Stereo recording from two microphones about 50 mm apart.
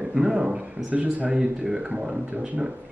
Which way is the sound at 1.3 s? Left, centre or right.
Centre.